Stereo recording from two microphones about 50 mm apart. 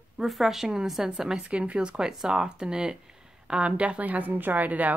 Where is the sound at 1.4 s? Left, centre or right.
Right.